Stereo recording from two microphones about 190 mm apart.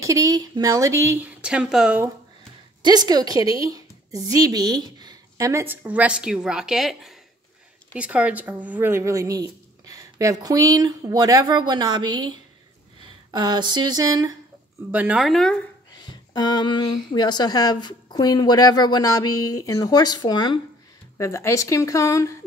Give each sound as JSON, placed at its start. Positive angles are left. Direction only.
{"t": 0.0, "sound": "speech", "side_deg": -15}
{"t": 2.8, "sound": "speech", "side_deg": -20}
{"t": 14.9, "sound": "speech", "side_deg": -10}
{"t": 15.9, "sound": "speech", "side_deg": 25}